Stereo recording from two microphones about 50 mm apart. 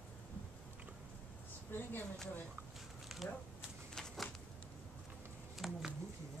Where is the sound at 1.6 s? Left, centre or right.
Left.